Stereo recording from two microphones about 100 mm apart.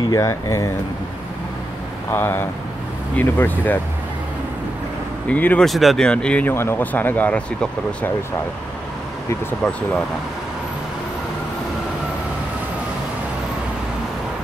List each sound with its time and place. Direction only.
0.1 s speech: 30° left (ahead or behind)
2.1 s speech: 20° left (ahead or behind)
5.3 s speech: 15° left (ahead or behind)
5.7 s speech: centre (ahead or behind)
6.5 s speech: 25° left (ahead or behind)